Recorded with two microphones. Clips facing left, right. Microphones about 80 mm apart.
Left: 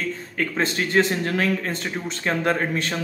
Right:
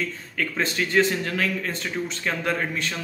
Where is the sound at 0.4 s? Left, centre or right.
Left.